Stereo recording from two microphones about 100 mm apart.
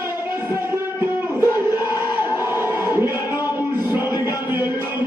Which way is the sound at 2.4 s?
20° right (ahead or behind).